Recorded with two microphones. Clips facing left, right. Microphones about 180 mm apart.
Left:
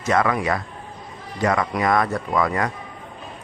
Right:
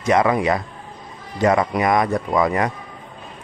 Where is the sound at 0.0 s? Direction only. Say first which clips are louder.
Right 3 dB; 20° right (ahead or behind).